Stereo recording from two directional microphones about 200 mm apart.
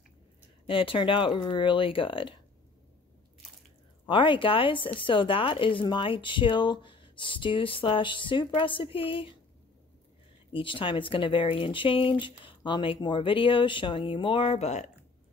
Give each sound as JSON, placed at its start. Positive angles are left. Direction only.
{"t": 0.7, "sound": "a woman's voice", "side_deg": 25}
{"t": 4.1, "sound": "a woman's voice", "side_deg": 25}
{"t": 10.5, "sound": "a woman's voice", "side_deg": 25}